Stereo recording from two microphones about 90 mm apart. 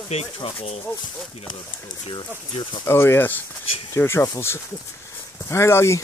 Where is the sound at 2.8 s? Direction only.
30° left (ahead or behind).